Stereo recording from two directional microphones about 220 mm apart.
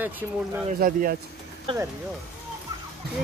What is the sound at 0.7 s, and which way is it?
Speech, 40° right (ahead or behind).